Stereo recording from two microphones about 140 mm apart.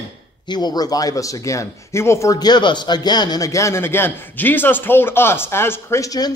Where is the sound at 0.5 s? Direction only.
30° left (ahead or behind).